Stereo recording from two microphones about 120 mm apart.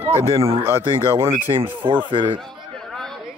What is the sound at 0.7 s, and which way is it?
Speech, 20° right (ahead or behind).